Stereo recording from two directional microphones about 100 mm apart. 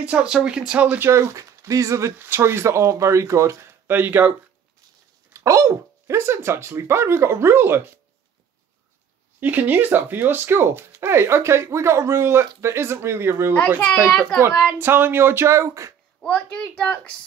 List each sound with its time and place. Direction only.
0.0 s speech: 10° right (ahead or behind)
5.3 s speech: 30° right (ahead or behind)
9.4 s speech: 20° right (ahead or behind)
14.0 s a child's voice: centre (ahead or behind)
14.8 s speech: 20° right (ahead or behind)
16.3 s a woman's voice: 15° left (ahead or behind)